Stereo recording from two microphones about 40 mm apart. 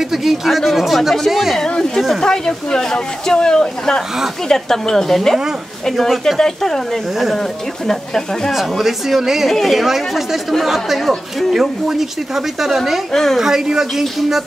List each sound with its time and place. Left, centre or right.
0.1 s speech: centre
1.6 s speech: centre
7.8 s speech: centre
8.5 s speech: centre
9.5 s speech: centre
13.1 s speech: centre
13.7 s speech: centre